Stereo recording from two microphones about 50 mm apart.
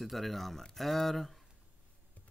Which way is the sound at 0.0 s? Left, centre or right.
Centre.